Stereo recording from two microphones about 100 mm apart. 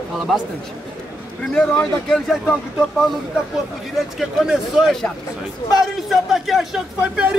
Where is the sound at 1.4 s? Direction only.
10° left (ahead or behind).